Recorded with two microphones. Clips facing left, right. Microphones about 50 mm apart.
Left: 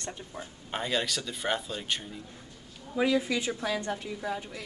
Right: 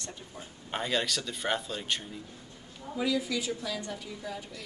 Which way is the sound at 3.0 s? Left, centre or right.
Left.